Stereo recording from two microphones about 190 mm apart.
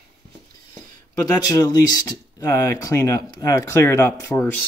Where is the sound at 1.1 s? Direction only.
15° left (ahead or behind).